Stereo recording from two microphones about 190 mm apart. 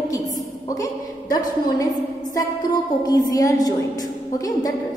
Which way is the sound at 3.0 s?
20° left (ahead or behind).